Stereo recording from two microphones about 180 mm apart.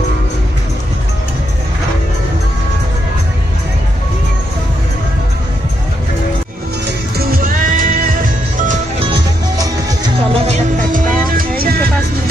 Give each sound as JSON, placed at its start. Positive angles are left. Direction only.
{"t": 7.2, "sound": "music", "side_deg": -55}
{"t": 9.0, "sound": "music", "side_deg": -25}
{"t": 10.4, "sound": "music", "side_deg": -45}